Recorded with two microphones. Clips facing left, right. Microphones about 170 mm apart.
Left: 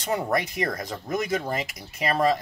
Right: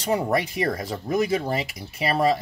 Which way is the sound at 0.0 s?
10° right (ahead or behind).